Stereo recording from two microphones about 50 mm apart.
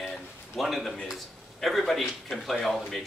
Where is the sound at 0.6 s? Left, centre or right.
Centre.